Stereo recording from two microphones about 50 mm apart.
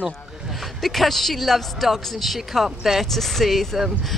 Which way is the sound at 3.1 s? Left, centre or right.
Centre.